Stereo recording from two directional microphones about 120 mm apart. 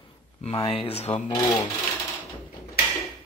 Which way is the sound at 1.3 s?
25° left (ahead or behind).